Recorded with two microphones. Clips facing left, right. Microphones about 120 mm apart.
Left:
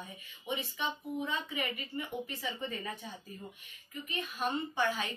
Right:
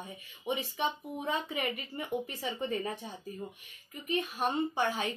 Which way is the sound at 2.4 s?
40° right (ahead or behind).